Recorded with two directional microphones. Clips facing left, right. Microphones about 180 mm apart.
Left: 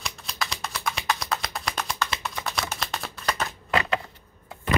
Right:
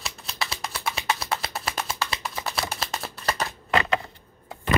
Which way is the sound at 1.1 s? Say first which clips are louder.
Right 1 dB; 5° right (ahead or behind).